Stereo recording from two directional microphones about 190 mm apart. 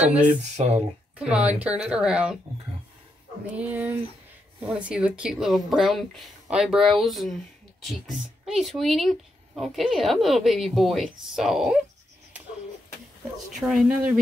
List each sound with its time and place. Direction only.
0.0 s speech: 5° right (ahead or behind)
0.4 s speech: 35° right (ahead or behind)
1.1 s a woman's voice: 5° right (ahead or behind)
3.5 s a woman's voice: 10° right (ahead or behind)
8.5 s a woman's voice: centre (ahead or behind)
13.6 s a woman's voice: 5° right (ahead or behind)